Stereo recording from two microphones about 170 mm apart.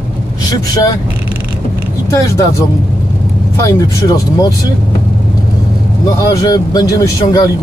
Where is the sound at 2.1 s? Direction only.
20° left (ahead or behind).